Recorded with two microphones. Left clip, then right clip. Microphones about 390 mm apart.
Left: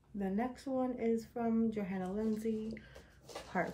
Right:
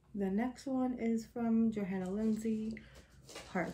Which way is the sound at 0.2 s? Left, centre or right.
Centre.